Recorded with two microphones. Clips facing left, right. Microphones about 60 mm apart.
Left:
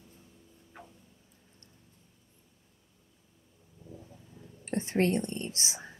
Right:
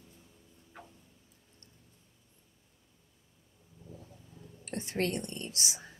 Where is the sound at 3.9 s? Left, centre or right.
Centre.